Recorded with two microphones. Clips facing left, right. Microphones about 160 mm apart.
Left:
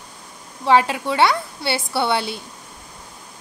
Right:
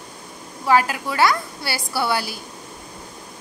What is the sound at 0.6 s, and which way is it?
A woman's voice, 25° left (ahead or behind).